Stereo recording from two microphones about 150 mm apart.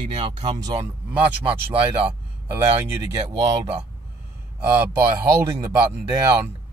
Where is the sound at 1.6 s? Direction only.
10° right (ahead or behind).